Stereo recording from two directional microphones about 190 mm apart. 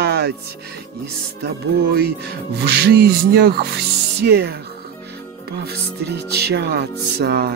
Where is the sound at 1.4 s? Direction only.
60° right (ahead or behind).